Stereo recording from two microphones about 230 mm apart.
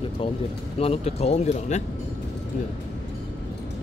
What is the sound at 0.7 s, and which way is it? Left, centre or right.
Speech, left.